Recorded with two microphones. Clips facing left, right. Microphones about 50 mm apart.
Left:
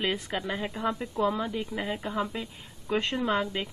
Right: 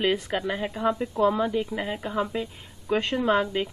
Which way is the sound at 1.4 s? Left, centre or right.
Right.